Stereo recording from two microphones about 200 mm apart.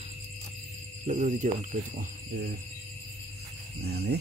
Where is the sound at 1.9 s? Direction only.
45° right (ahead or behind).